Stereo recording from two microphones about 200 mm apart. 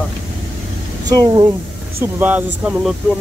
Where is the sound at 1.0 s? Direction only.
20° right (ahead or behind).